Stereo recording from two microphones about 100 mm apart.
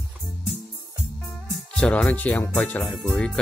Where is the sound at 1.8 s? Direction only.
10° left (ahead or behind).